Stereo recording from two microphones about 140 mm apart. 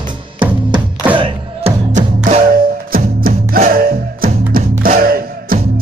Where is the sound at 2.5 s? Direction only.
90° right.